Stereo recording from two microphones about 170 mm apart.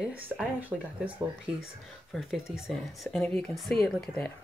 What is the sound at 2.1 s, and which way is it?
Speech, 5° right (ahead or behind).